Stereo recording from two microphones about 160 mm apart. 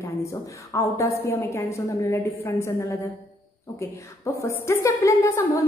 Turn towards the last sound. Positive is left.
turn(degrees=20)  # may be behind; listen again after turning